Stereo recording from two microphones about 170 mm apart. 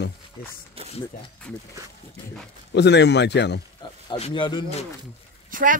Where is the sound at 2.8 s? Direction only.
90° left.